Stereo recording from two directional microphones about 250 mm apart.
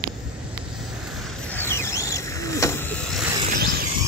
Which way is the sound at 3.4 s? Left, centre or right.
Right.